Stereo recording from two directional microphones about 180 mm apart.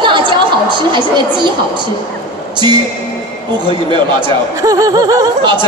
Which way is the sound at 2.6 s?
25° right (ahead or behind).